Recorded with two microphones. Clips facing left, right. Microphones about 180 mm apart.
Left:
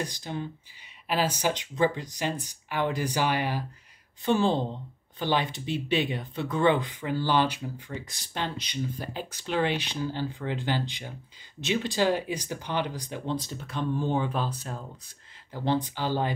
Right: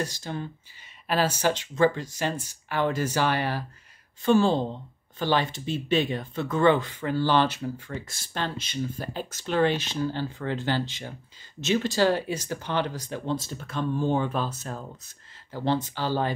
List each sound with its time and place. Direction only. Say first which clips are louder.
0.0 s speech: right 2 dB; 15° left (ahead or behind)